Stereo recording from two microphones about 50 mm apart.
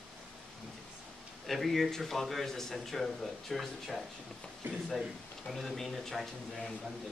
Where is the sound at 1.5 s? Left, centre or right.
Centre.